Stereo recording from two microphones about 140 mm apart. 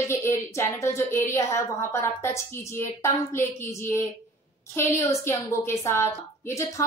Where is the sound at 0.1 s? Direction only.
20° left (ahead or behind).